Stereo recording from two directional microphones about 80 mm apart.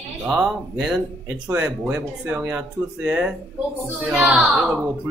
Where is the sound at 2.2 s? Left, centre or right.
Right.